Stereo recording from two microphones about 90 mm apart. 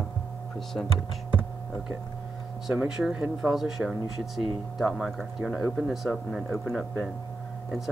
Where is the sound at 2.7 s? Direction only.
10° right (ahead or behind).